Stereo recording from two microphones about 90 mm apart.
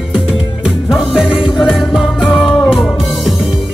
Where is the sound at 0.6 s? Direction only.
5° right (ahead or behind).